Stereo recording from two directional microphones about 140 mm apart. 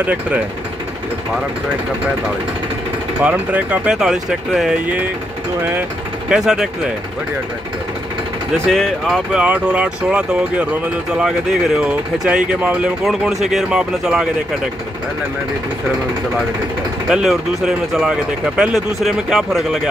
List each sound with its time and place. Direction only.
0.0 s speech: 10° right (ahead or behind)
3.3 s speech: 10° right (ahead or behind)
8.6 s speech: centre (ahead or behind)
17.1 s speech: 5° right (ahead or behind)